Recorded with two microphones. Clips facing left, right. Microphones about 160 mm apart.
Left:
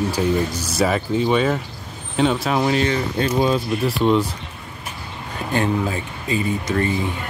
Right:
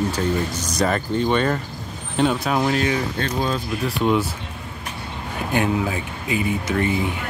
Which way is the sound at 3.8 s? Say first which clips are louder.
Left 1 dB; centre (ahead or behind).